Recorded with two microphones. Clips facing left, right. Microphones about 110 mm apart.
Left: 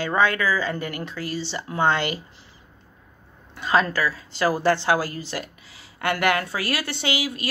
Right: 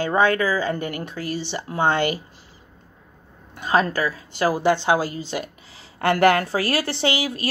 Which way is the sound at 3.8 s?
40° right (ahead or behind).